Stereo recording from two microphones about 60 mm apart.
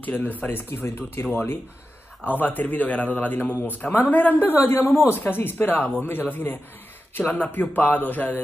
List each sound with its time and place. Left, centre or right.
0.0 s a man's voice: left
7.2 s a man's voice: left